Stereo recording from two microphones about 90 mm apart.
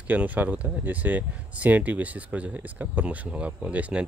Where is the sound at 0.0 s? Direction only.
20° right (ahead or behind).